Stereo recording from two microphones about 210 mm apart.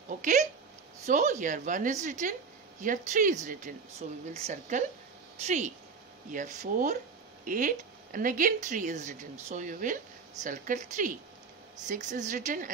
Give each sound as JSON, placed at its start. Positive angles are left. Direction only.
{"t": 0.2, "sound": "a woman's voice", "side_deg": -40}